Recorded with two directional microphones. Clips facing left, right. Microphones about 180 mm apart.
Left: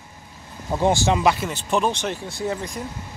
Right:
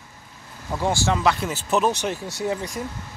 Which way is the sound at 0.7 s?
20° left (ahead or behind).